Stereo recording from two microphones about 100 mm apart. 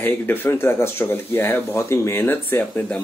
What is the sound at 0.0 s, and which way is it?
Speech, 20° left (ahead or behind).